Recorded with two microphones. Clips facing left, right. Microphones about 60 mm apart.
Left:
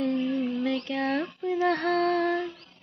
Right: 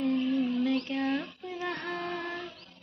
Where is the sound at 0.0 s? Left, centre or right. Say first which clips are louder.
Left 1 dB; left.